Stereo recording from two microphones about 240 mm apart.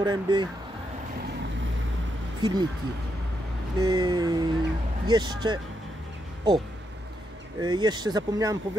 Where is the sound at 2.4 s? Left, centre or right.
Centre.